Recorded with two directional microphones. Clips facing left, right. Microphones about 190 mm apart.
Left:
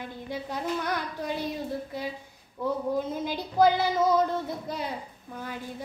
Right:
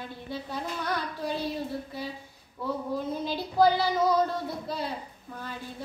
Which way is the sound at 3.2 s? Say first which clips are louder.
Even; 15° left (ahead or behind).